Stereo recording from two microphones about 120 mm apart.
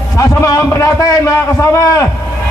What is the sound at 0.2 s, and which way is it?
A man's voice, 25° left (ahead or behind).